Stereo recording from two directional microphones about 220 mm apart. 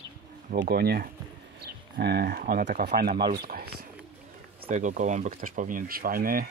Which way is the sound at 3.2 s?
40° right (ahead or behind).